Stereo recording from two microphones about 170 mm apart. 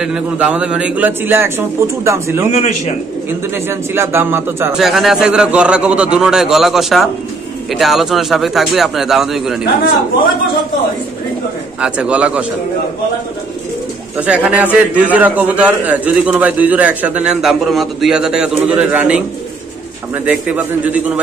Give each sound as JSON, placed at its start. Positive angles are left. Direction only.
{"t": 0.0, "sound": "a man's voice", "side_deg": -5}
{"t": 2.5, "sound": "a man's voice", "side_deg": 40}
{"t": 3.5, "sound": "a man's voice", "side_deg": -15}
{"t": 4.7, "sound": "a man's voice", "side_deg": 0}
{"t": 11.8, "sound": "a man's voice", "side_deg": -5}
{"t": 14.2, "sound": "a man's voice", "side_deg": -10}
{"t": 20.2, "sound": "a man's voice", "side_deg": -10}